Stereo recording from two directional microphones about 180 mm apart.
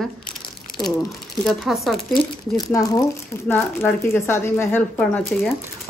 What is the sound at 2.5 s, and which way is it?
Speech, 20° left (ahead or behind).